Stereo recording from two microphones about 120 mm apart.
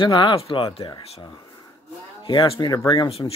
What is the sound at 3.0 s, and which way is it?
Speech, 55° left (ahead or behind).